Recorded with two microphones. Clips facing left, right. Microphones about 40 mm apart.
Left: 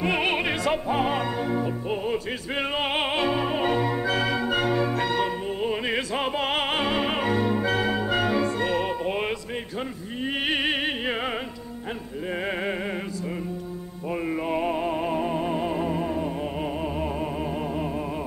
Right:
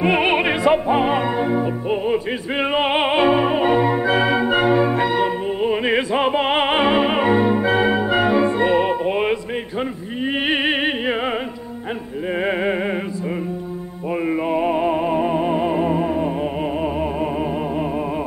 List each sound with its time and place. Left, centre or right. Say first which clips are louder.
0.0 s music: right 7 dB; right
14.5 s music: right 7 dB; centre